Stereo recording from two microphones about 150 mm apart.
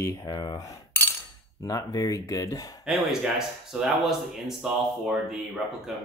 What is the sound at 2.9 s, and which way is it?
Speech, centre (ahead or behind).